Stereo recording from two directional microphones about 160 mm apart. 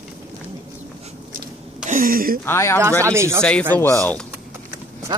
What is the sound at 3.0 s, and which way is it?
Speech, 15° right (ahead or behind).